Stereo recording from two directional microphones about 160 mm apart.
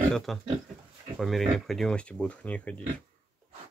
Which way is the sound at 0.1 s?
Centre (ahead or behind).